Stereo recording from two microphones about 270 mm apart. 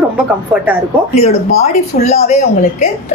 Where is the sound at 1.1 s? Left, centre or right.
Left.